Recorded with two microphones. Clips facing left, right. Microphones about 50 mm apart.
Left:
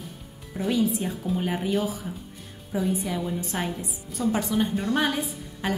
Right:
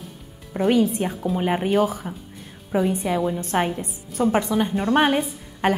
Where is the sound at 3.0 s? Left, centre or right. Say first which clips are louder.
Right 6 dB; right.